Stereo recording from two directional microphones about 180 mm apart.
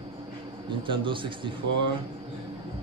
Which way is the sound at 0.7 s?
25° right (ahead or behind).